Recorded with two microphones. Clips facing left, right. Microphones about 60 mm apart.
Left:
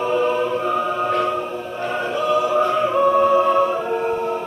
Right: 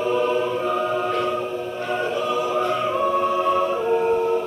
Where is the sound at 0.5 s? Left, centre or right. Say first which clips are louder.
Left 1 dB; centre.